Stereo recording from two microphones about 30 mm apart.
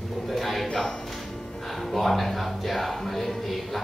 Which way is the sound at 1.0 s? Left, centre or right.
Centre.